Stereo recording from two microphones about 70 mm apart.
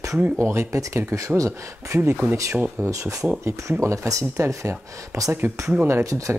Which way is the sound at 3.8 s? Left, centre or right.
Right.